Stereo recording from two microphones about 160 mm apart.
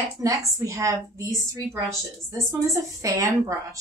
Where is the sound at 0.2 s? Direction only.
20° right (ahead or behind).